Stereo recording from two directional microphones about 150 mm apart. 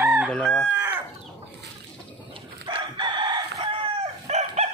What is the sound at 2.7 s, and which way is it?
Crowing, 30° right (ahead or behind).